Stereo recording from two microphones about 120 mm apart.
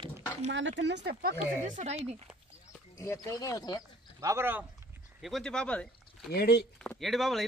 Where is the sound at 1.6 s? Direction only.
80° right; by 2.2 s 65° right (ahead or behind).